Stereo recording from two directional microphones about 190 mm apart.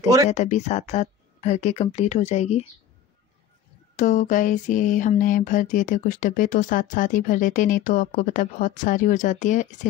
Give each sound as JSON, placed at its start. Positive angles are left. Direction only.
{"t": 0.0, "sound": "speech", "side_deg": -20}
{"t": 0.3, "sound": "speech", "side_deg": 35}
{"t": 3.9, "sound": "a sound", "side_deg": 40}